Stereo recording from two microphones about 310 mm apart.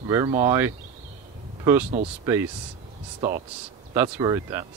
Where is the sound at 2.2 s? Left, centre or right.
Centre.